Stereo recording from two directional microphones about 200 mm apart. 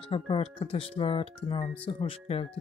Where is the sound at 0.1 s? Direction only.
25° left (ahead or behind).